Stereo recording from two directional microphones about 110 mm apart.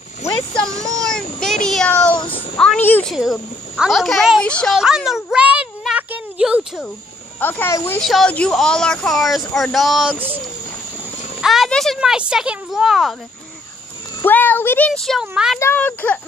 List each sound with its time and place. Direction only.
1.0 s child singing: 5° left (ahead or behind)
2.1 s child singing: 50° left (ahead or behind)
2.8 s a child's voice: 15° left (ahead or behind)
3.1 s speech: centre (ahead or behind)
4.7 s a sound: 5° right (ahead or behind)
7.3 s a child's voice: 15° left (ahead or behind)
8.0 s speech: 5° left (ahead or behind)
11.4 s a sound: 5° right (ahead or behind)
11.7 s speech: centre (ahead or behind)
14.2 s a child's voice: 15° left (ahead or behind)
15.0 s speech: 5° left (ahead or behind)
15.6 s a child's voice: 15° left (ahead or behind)